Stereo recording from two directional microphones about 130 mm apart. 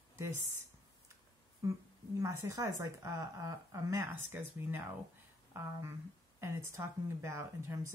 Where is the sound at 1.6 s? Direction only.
25° right (ahead or behind).